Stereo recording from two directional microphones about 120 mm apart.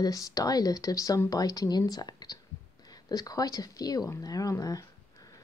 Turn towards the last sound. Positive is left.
turn(degrees=30)  # may be behind; listen again after turning